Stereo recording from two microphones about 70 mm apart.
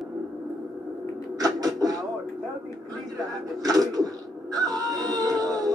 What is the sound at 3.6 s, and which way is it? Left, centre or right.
Music, right.